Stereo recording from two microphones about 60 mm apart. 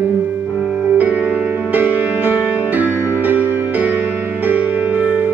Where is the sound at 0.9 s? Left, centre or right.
Right.